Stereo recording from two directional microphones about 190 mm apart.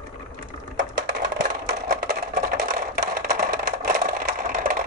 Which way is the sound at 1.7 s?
50° right (ahead or behind).